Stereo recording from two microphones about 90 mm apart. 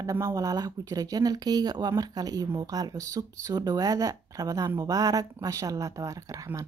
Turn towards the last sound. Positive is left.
turn(degrees=-35)  # may be behind; listen again after turning